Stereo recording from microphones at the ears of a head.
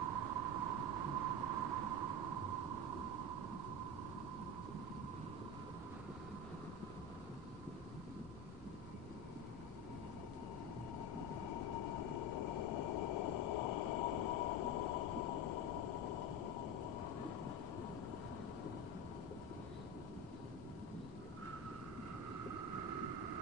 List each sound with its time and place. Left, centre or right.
0.0 s a sound: right
11.4 s train: left
22.5 s vehicle: right